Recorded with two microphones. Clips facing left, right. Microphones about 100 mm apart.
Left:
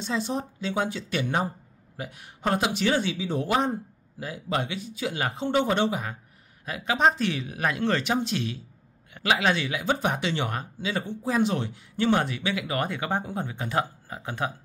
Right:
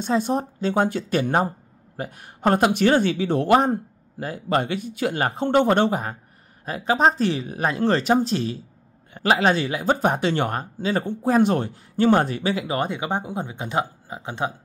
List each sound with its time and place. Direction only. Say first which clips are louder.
0.0 s speech: right 7 dB; 50° right (ahead or behind); by 14.5 s 20° right (ahead or behind)